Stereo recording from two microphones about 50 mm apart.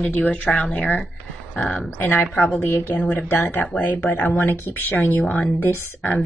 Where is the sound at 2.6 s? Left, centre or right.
Left.